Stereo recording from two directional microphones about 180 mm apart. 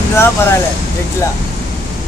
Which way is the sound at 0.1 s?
15° left (ahead or behind).